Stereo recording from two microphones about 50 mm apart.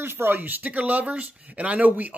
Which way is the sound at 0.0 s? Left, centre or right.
Right.